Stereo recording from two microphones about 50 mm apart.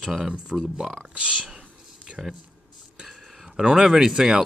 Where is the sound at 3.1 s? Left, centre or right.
Centre.